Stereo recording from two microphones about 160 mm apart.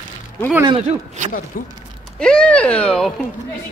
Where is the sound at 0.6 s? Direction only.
35° right (ahead or behind).